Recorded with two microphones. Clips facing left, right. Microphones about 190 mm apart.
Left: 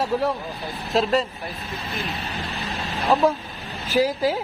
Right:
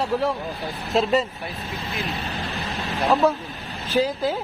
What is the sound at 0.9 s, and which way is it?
Speech, centre (ahead or behind).